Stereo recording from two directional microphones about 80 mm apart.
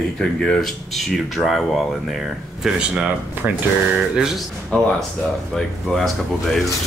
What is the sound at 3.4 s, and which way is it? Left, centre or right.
Speech, right.